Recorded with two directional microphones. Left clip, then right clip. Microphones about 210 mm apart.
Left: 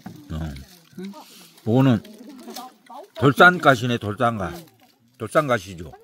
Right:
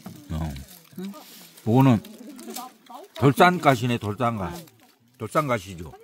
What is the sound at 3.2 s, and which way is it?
A man's voice, 5° right (ahead or behind).